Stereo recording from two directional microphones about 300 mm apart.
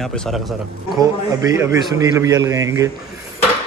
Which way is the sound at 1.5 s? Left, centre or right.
Centre.